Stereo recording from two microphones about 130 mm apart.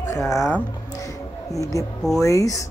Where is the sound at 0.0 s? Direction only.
25° left (ahead or behind).